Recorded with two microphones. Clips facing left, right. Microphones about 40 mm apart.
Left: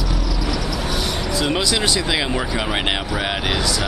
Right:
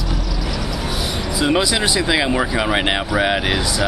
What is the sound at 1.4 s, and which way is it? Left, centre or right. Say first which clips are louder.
Speech: right 4 dB; centre.